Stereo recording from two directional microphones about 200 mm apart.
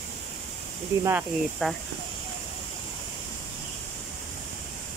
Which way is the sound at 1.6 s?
5° left (ahead or behind).